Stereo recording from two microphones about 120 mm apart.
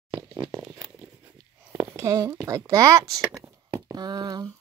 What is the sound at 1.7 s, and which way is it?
Speech, 25° right (ahead or behind).